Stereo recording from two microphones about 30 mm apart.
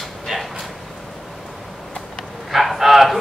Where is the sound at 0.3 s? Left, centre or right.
Centre.